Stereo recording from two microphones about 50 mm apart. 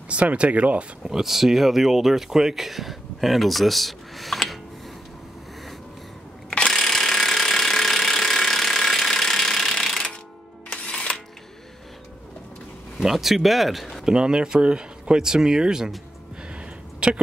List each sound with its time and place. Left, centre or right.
0.1 s speech: right
1.0 s speech: centre
6.7 s ratchet: centre
10.7 s music: left
13.0 s speech: centre
14.0 s speech: centre
16.5 s a sound: right